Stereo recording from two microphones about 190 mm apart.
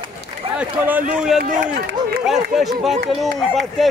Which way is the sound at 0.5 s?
10° right (ahead or behind).